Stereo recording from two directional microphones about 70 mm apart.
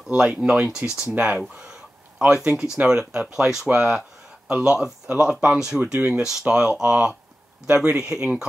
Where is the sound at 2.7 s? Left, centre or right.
Centre.